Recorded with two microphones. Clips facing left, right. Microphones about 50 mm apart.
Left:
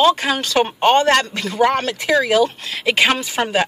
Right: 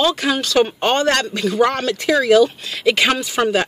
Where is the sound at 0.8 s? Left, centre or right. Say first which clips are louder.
Left 3 dB; centre.